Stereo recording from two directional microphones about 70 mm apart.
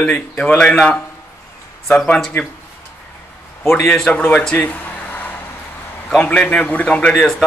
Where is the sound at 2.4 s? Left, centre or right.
Left.